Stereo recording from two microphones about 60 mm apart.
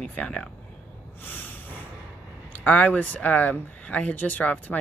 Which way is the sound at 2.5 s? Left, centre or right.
Left.